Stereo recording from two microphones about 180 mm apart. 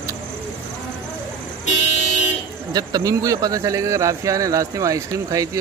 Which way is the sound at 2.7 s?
20° right (ahead or behind).